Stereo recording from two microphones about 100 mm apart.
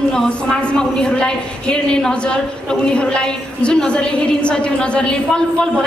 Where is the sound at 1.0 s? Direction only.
10° left (ahead or behind).